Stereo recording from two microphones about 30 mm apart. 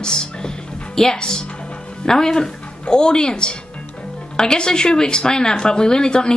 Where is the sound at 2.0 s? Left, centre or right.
Left.